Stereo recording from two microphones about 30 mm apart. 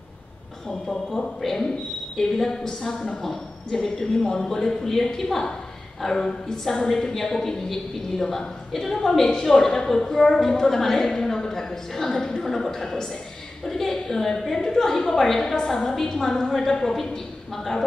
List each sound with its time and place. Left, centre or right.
1.4 s a woman's voice: centre
9.5 s a woman's voice: left
11.1 s a sound: centre
13.7 s a woman's voice: centre